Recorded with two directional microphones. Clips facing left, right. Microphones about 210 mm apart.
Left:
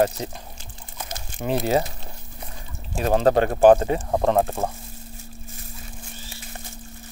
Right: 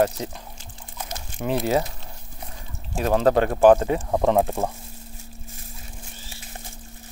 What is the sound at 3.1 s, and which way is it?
Speech, 30° left (ahead or behind).